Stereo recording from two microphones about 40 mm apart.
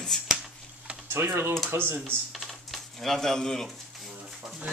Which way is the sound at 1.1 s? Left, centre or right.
Right.